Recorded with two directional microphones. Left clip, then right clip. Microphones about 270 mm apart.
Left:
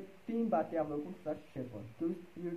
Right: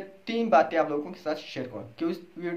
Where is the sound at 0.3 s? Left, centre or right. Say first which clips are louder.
Right 12 dB; centre.